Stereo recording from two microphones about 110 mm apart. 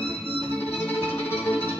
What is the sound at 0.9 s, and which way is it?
Music, 15° left (ahead or behind).